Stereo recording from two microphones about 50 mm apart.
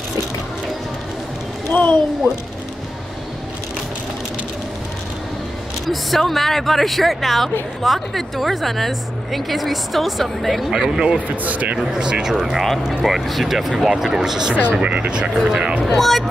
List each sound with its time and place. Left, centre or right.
1.7 s speech: left
5.9 s speech: centre
10.7 s speech: centre
11.4 s speech: right
11.9 s speech: centre
14.8 s speech: right
15.8 s speech: centre